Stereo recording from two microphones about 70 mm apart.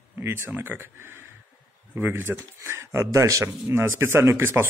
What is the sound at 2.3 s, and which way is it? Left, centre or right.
Speech, centre.